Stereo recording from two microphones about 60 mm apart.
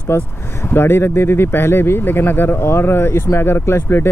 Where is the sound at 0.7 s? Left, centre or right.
Left.